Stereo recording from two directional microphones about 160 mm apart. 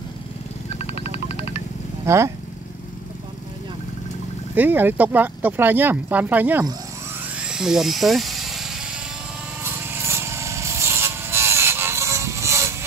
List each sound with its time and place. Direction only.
0.7 s music: 40° left (ahead or behind)
2.0 s speech: 20° right (ahead or behind)
4.6 s speech: 10° right (ahead or behind)
7.3 s electric toothbrush: 5° right (ahead or behind)
9.6 s rub: 15° right (ahead or behind)